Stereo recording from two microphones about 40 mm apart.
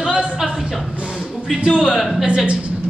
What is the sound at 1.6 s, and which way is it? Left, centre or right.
Speech, right.